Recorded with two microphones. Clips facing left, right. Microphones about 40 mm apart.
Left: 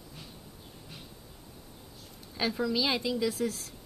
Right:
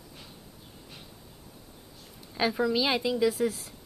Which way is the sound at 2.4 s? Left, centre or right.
Centre.